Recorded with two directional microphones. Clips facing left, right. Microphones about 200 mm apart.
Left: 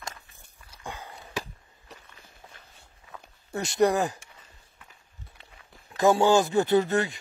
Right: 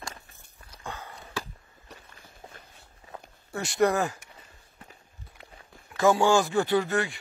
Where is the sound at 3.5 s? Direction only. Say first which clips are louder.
Left 1 dB; 20° left (ahead or behind).